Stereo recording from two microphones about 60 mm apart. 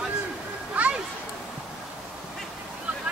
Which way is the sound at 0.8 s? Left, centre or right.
Right.